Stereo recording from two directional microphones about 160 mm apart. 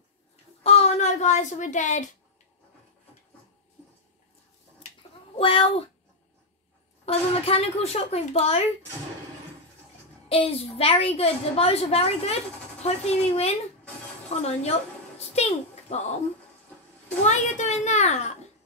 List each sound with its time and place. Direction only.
0.7 s a child's voice: 45° left (ahead or behind)
5.4 s a child's voice: 35° left (ahead or behind)
7.1 s a child's voice: 40° left (ahead or behind)
10.2 s a child's voice: 35° left (ahead or behind)
15.1 s a sound: 40° left (ahead or behind)
17.2 s a child's voice: 45° left (ahead or behind)